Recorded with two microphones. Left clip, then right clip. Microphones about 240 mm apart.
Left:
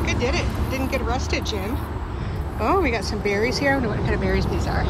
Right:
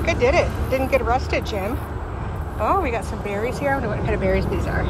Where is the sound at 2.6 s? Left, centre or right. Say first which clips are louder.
Even; left.